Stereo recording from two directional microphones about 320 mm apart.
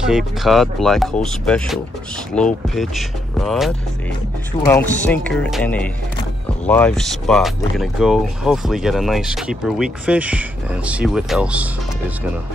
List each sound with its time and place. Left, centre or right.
0.0 s speech: centre